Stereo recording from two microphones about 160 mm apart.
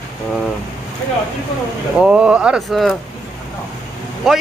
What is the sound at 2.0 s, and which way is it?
Speech, 5° right (ahead or behind).